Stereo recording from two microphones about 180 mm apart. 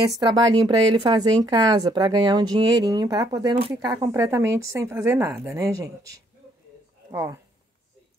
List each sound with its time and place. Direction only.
0.3 s a woman's voice: 25° right (ahead or behind)